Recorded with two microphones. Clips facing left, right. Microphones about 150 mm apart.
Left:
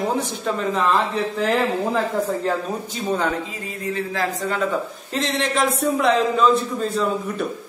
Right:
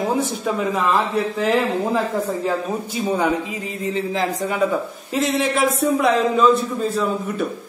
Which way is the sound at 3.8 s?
20° right (ahead or behind).